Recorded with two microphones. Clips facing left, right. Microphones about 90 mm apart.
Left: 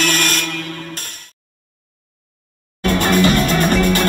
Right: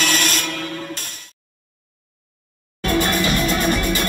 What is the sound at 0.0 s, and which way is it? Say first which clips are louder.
Music: left 2 dB; 50° left (ahead or behind).